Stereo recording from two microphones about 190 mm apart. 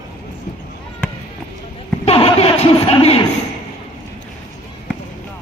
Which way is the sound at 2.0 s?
30° left (ahead or behind).